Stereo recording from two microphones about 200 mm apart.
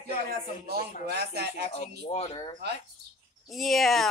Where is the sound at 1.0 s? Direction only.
55° right (ahead or behind).